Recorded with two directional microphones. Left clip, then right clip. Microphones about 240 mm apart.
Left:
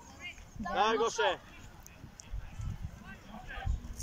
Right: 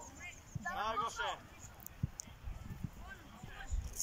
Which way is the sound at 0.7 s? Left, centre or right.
Left.